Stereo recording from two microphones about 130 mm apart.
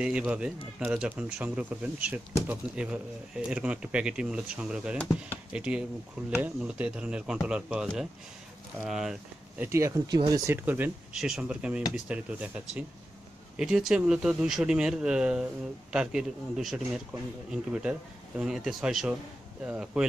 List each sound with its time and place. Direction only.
0.0 s speech: 5° right (ahead or behind)
9.6 s speech: 20° right (ahead or behind)
11.1 s speech: centre (ahead or behind)